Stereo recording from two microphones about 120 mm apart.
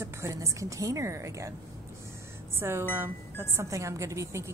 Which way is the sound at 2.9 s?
20° right (ahead or behind).